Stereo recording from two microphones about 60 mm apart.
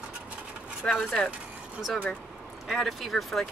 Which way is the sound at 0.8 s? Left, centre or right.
Centre.